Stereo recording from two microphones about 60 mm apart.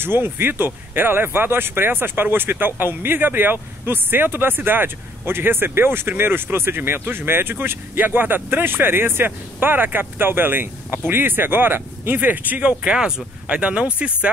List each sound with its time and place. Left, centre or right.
0.0 s speech: right